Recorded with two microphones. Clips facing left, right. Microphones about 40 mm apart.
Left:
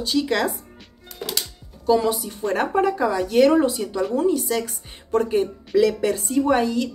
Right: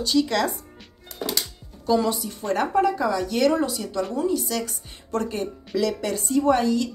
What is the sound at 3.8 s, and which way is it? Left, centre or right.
Speech, centre.